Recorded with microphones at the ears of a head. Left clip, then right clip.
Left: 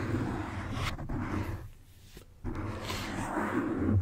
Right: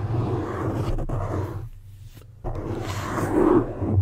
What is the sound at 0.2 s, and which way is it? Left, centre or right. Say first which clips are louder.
Vehicle: right 9 dB; right.